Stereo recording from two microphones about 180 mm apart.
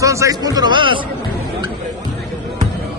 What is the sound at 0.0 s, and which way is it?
A man's voice, 15° right (ahead or behind).